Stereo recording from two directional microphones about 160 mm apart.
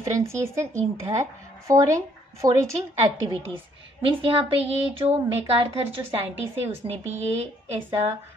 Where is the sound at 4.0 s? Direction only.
35° right (ahead or behind).